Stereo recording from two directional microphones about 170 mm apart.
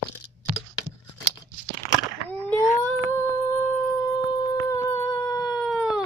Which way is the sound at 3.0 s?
15° left (ahead or behind).